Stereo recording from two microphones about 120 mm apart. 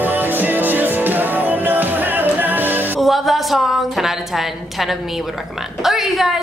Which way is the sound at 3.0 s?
Centre (ahead or behind).